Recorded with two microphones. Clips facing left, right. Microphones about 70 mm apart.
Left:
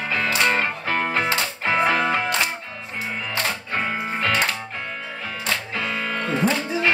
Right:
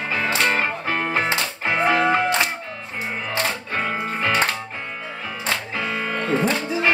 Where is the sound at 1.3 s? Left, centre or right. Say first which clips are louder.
Left 1 dB; centre.